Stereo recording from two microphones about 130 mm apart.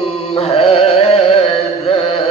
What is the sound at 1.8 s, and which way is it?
Carnatic music, 50° left (ahead or behind).